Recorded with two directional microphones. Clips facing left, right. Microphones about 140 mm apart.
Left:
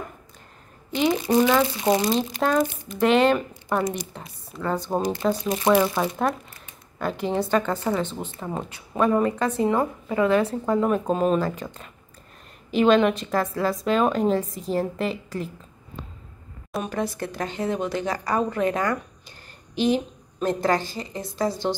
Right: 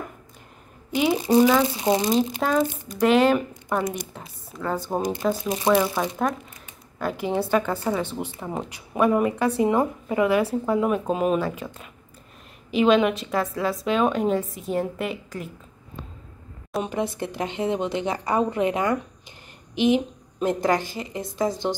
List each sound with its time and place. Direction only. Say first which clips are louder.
0.9 s a woman's voice: even; 10° right (ahead or behind)
1.2 s speech: right 4 dB; 25° right (ahead or behind)
1.8 s a woman's voice: even; 15° right (ahead or behind)
2.7 s speech: even; 50° right (ahead or behind)
3.0 s a woman's voice: even; 5° right (ahead or behind)
16.8 s a woman's voice: even; 20° right (ahead or behind)